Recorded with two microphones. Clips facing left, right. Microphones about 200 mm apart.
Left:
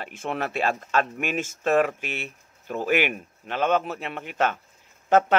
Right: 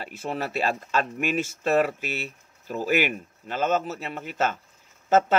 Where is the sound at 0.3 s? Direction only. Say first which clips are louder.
Left 1 dB; 55° left (ahead or behind).